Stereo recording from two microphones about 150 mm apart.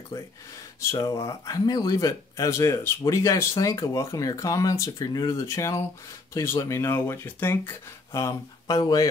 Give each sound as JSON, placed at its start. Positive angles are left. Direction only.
{"t": 0.7, "sound": "speech", "side_deg": 20}